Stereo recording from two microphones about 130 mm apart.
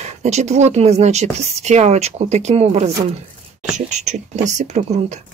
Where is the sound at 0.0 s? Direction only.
60° right (ahead or behind).